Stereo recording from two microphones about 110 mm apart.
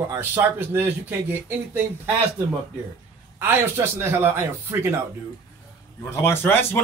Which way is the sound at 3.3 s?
20° right (ahead or behind).